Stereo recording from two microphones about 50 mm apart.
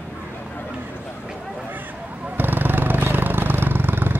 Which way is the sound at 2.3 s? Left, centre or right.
Right.